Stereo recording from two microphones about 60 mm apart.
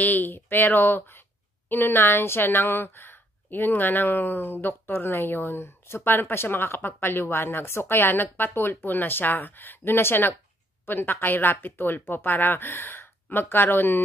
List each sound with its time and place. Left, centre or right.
0.0 s speech: left